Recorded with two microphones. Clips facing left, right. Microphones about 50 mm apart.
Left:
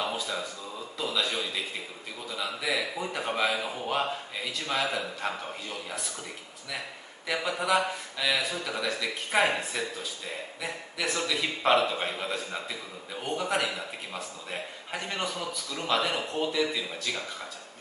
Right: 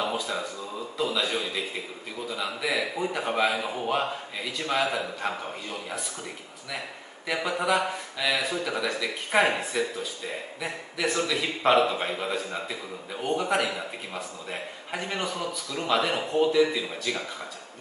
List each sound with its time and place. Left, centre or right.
0.0 s a sound: centre
1.1 s a man's voice: centre
7.2 s speech: centre